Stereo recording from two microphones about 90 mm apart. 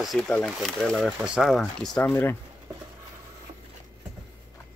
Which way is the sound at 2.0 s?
20° left (ahead or behind).